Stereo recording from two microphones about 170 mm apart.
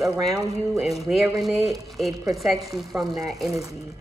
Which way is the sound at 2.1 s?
20° right (ahead or behind).